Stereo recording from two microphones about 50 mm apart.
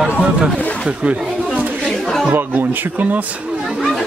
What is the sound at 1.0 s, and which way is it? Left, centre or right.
Speech, right.